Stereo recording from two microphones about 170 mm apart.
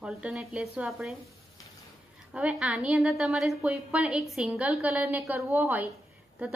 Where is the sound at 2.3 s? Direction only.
5° right (ahead or behind).